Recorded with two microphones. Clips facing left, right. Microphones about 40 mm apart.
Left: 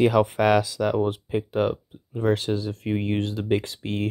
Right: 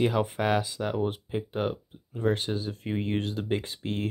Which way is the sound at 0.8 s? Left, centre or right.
Left.